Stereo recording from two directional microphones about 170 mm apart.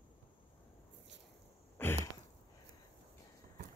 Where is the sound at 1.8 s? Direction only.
10° left (ahead or behind).